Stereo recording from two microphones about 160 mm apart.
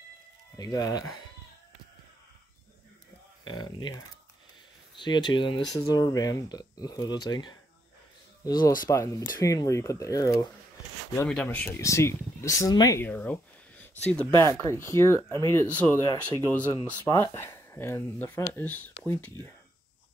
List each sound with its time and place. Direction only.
0.6 s speech: 25° left (ahead or behind)
3.4 s speech: 30° left (ahead or behind)
4.9 s speech: 30° left (ahead or behind)
8.6 s speech: 20° left (ahead or behind)
11.2 s speech: 5° left (ahead or behind); by 13.0 s 20° left (ahead or behind)
13.0 s a sound: 10° left (ahead or behind)
14.0 s speech: 15° left (ahead or behind)